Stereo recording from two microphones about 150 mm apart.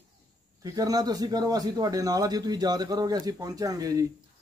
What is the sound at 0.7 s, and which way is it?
A man's voice, 25° right (ahead or behind).